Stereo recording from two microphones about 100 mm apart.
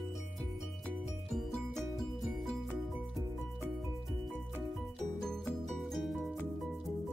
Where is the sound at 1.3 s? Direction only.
Centre (ahead or behind).